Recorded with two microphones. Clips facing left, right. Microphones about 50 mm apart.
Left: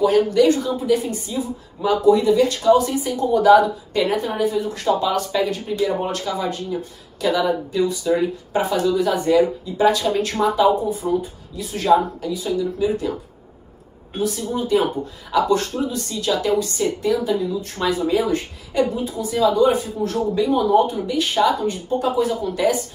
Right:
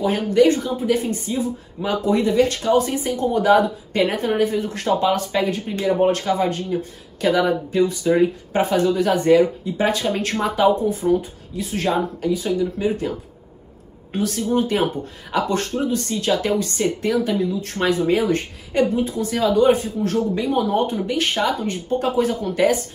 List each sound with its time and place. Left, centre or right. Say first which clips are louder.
0.0 s speech: left 1 dB; right
14.1 s a woman's voice: right 3 dB; right